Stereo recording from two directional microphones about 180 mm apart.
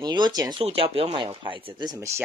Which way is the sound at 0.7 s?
35° right (ahead or behind).